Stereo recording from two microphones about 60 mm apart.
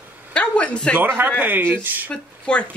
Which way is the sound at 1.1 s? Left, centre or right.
Right.